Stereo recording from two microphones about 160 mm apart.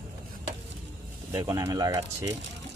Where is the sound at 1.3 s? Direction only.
20° right (ahead or behind).